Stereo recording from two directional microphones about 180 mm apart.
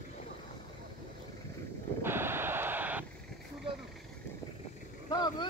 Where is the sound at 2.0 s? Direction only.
15° right (ahead or behind).